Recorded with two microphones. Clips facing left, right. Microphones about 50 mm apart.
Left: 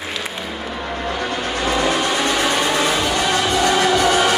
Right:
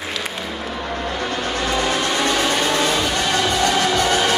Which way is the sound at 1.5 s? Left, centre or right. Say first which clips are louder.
Left 2 dB; centre.